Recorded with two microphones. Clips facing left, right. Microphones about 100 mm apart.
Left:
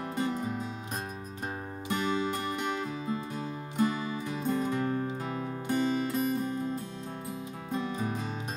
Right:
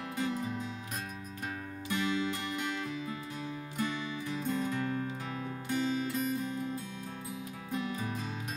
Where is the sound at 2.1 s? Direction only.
35° left (ahead or behind).